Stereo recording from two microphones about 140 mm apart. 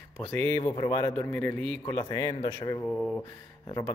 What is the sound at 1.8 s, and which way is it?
A man's voice, 25° left (ahead or behind).